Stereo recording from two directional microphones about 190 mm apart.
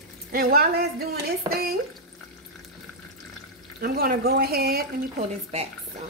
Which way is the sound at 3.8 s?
50° right (ahead or behind).